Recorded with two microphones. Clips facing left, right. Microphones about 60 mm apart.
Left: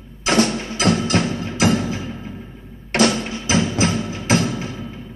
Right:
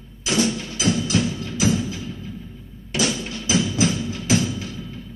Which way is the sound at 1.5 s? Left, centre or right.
Left.